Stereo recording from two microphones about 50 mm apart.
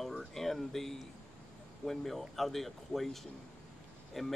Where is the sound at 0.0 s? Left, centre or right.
Centre.